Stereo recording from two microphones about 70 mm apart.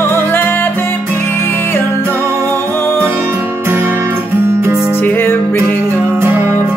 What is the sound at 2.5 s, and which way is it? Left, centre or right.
Music, left.